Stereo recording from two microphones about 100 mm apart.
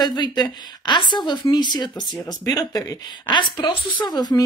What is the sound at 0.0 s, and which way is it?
A woman's voice, 45° left (ahead or behind).